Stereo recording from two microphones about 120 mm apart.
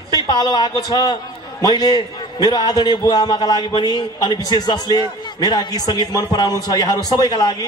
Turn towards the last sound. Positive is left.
turn(degrees=35)  # may be behind; listen again after turning